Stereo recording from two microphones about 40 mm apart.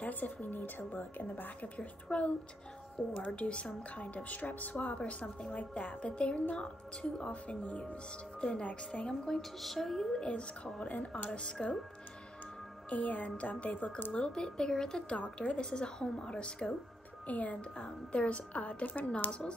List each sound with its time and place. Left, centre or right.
0.0 s a woman's voice: left
2.0 s a woman's voice: left
3.0 s a woman's voice: centre
3.3 s a woman's voice: left
7.6 s a woman's voice: left
8.4 s a woman's voice: left
9.4 s music: centre
10.2 s a woman's voice: left
11.6 s a woman's voice: centre
12.9 s a woman's voice: left
14.1 s a woman's voice: left
15.3 s a woman's voice: left
15.7 s a woman's voice: centre
17.3 s a woman's voice: left